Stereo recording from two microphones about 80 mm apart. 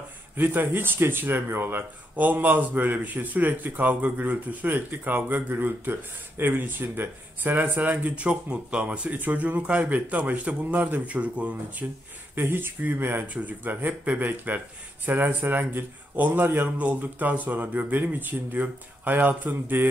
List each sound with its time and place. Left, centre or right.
0.4 s speech: right
11.8 s speech: right